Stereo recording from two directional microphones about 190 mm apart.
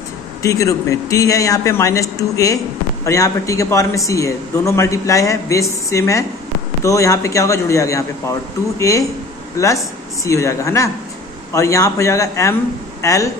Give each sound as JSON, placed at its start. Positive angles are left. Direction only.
{"t": 0.4, "sound": "a man's voice", "side_deg": 15}